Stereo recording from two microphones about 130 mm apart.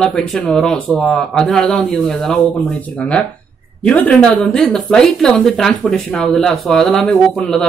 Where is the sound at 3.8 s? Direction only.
10° left (ahead or behind).